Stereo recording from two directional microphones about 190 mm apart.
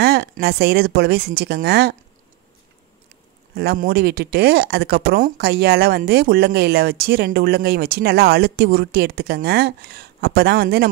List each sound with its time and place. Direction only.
0.0 s speech: 60° right (ahead or behind)
3.5 s speech: 55° right (ahead or behind)